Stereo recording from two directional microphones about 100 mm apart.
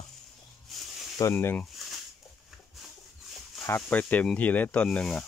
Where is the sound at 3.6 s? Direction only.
25° left (ahead or behind).